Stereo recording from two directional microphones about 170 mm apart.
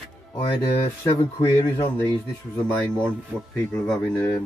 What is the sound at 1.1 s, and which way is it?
Speech, 25° left (ahead or behind).